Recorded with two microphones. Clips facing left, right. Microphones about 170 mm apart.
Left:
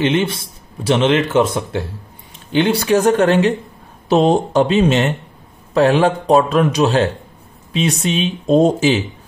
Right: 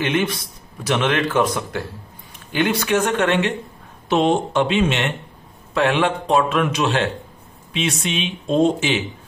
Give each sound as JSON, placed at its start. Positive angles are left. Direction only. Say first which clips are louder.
{"t": 0.0, "sound": "speech", "louder": "left 4 dB", "side_deg": 25}